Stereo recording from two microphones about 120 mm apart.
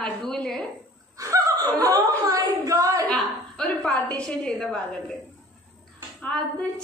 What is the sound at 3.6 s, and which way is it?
A woman's voice, 5° left (ahead or behind).